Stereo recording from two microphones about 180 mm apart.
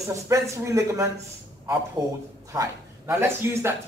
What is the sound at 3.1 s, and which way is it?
Speech, 15° right (ahead or behind).